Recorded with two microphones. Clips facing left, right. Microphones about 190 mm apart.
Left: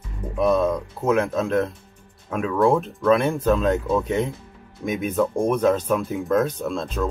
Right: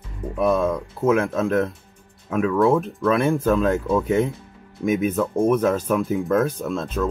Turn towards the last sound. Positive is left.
turn(degrees=0)  # may be behind; listen again after turning